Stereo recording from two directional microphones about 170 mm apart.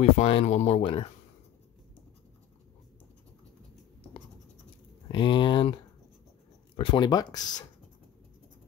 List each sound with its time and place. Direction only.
0.0 s speech: 40° left (ahead or behind)
5.1 s speech: 30° left (ahead or behind)
6.8 s speech: 25° left (ahead or behind)